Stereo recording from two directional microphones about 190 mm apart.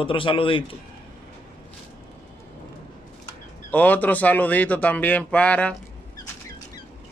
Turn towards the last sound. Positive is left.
turn(degrees=5)  # may be behind; listen again after turning